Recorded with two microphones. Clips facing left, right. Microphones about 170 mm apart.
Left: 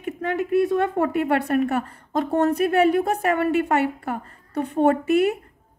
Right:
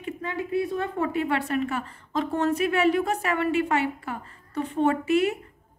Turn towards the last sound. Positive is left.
turn(degrees=55)  # may be behind; listen again after turning